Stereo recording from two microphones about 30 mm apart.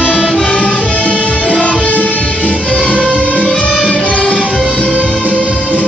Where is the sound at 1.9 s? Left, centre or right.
Left.